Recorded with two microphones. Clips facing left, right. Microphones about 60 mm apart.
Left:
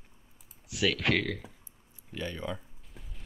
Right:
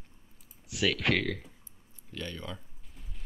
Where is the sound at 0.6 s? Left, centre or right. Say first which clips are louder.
Even; centre.